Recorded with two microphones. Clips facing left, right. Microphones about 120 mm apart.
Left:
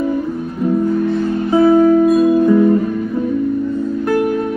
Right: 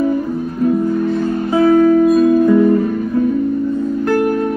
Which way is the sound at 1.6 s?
25° left (ahead or behind).